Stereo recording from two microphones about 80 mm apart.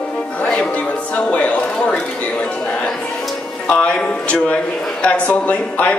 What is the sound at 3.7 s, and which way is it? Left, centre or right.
A man's voice, centre.